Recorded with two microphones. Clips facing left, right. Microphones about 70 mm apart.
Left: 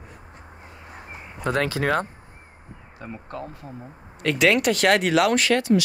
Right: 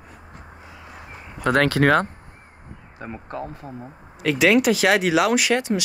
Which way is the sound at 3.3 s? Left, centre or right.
Centre.